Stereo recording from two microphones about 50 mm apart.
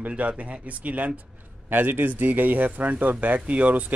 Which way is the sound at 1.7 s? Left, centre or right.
Right.